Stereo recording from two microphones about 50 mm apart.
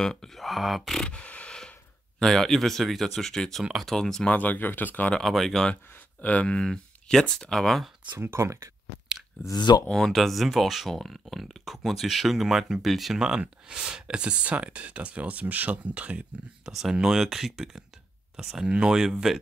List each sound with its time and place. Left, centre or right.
0.0 s speech: centre
0.4 s speech: centre
0.9 s speech: centre
1.2 s a sound: left
2.1 s speech: centre
4.3 s speech: left
5.2 s speech: centre
8.2 s speech: right
9.1 s a sound: centre
9.9 s speech: centre
13.2 s speech: centre
16.6 s speech: centre